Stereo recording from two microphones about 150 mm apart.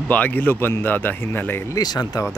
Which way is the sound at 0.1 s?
10° left (ahead or behind).